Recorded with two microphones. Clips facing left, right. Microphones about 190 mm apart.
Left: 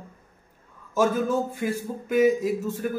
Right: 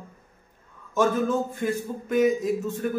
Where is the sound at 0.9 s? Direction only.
5° left (ahead or behind).